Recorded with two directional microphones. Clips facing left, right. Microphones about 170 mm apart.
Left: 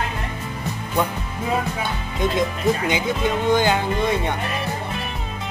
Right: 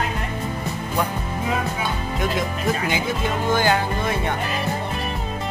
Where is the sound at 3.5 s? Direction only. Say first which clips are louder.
Even; 20° left (ahead or behind).